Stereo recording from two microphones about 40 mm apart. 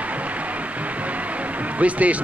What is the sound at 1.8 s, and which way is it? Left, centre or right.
Speech, right.